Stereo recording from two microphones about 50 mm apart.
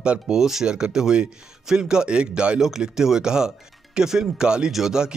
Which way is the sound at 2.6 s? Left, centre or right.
Centre.